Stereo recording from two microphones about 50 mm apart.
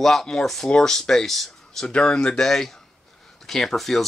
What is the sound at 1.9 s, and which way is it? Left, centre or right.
Speech, centre.